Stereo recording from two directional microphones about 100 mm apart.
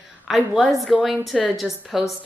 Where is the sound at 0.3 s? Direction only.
Centre (ahead or behind).